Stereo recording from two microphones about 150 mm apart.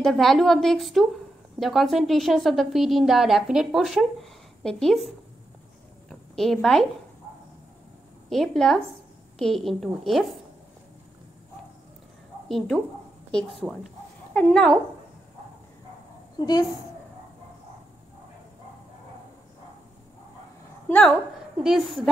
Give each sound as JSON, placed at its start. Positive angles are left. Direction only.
{"t": 0.0, "sound": "a woman's voice", "side_deg": 0}
{"t": 6.0, "sound": "a sound", "side_deg": 0}
{"t": 8.3, "sound": "a woman's voice", "side_deg": 0}
{"t": 12.4, "sound": "a woman's voice", "side_deg": 0}
{"t": 16.3, "sound": "a woman's voice", "side_deg": 25}
{"t": 20.9, "sound": "a woman's voice", "side_deg": 5}